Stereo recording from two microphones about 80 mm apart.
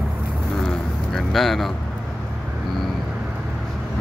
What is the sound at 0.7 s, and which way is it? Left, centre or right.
Vehicle, centre.